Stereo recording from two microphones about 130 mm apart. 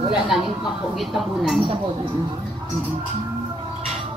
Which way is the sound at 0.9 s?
Centre (ahead or behind).